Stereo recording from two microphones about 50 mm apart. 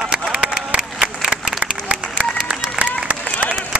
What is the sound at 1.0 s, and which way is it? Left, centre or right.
Applause, right.